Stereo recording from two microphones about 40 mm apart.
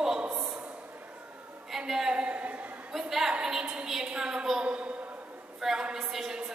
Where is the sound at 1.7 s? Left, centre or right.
Centre.